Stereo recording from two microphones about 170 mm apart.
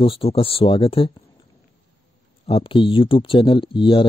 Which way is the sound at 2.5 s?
30° left (ahead or behind).